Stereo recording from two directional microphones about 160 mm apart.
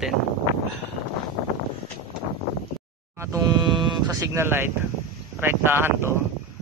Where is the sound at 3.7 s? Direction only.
30° right (ahead or behind).